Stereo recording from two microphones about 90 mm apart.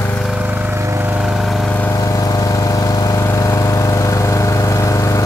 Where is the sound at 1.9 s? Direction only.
40° left (ahead or behind).